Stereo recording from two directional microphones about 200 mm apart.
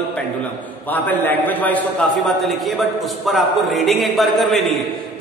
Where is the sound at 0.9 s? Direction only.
10° left (ahead or behind).